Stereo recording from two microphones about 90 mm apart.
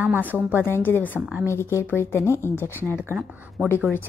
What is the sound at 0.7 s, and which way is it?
A woman's voice, 25° left (ahead or behind).